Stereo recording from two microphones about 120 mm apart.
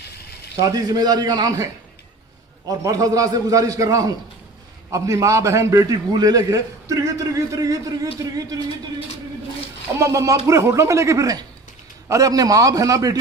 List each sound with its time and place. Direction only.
0.6 s a man's voice: 30° right (ahead or behind)
2.7 s a man's voice: 30° right (ahead or behind)
9.9 s a man's voice: 25° right (ahead or behind)